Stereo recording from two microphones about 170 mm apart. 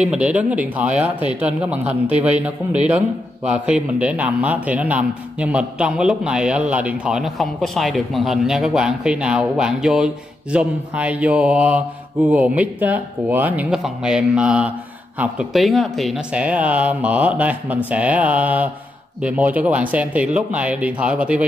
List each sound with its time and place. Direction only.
0.0 s a man's voice: 5° right (ahead or behind)